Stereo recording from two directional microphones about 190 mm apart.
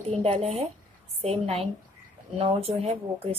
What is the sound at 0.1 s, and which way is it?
A woman's voice, 30° right (ahead or behind).